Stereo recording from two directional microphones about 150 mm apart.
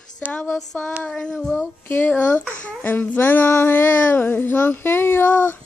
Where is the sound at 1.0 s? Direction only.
5° left (ahead or behind).